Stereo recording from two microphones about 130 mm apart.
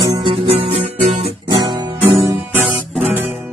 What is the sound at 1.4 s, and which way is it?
Guitar, 35° right (ahead or behind).